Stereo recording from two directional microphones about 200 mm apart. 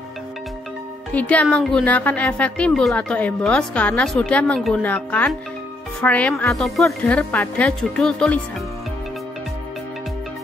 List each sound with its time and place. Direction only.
1.1 s a woman's voice: 5° left (ahead or behind)